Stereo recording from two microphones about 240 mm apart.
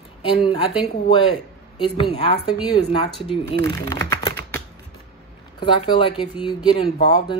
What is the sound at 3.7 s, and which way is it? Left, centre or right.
Speech, centre.